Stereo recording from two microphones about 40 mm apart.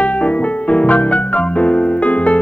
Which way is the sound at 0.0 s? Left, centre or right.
Left.